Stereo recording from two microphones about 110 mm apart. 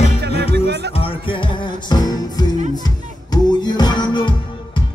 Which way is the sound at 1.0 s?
50° left (ahead or behind).